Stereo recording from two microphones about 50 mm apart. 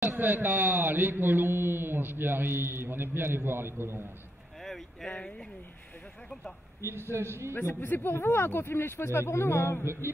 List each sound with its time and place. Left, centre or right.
0.0 s a man's voice: right
4.6 s a sound: centre
6.8 s a man's voice: right
7.8 s speech: left